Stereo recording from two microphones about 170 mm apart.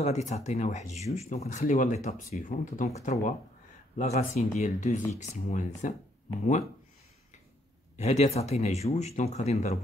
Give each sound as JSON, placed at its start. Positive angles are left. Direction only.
{"t": 0.0, "sound": "speech", "side_deg": 40}
{"t": 8.0, "sound": "speech", "side_deg": 40}